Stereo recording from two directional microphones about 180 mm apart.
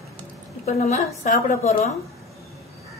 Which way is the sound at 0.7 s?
40° left (ahead or behind).